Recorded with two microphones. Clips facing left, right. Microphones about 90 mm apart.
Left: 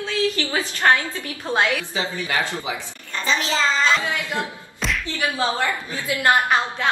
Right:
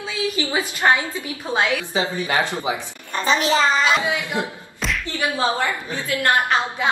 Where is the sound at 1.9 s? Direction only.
20° right (ahead or behind).